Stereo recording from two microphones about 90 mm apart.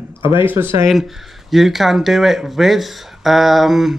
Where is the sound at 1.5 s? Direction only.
Centre (ahead or behind).